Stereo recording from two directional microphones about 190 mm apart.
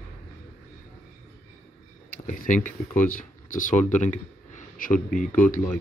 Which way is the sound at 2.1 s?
45° left (ahead or behind).